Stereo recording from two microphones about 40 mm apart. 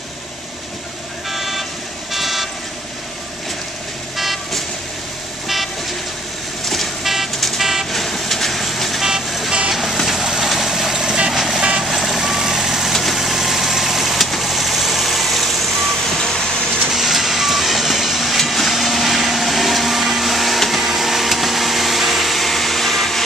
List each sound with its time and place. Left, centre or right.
1.3 s vehicle: centre
4.2 s vehicle: centre
6.6 s vehicle: centre
7.1 s vehicle: centre
11.3 s vehicle: centre
16.9 s vehicle: centre